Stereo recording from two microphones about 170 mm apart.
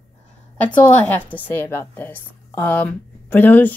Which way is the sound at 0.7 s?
10° left (ahead or behind).